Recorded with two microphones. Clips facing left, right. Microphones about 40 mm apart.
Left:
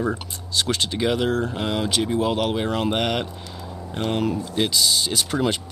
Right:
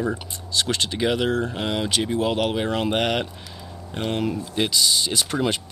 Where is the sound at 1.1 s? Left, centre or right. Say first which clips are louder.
Left 1 dB; right.